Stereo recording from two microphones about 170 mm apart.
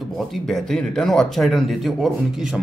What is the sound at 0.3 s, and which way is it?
A man's voice, centre (ahead or behind).